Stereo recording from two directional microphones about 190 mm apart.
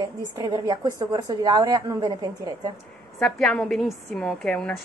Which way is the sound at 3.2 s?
5° left (ahead or behind).